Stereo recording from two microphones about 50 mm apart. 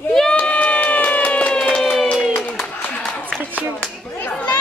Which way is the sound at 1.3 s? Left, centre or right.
Left.